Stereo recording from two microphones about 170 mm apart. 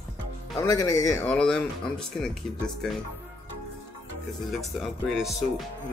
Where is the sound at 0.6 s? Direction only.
20° left (ahead or behind).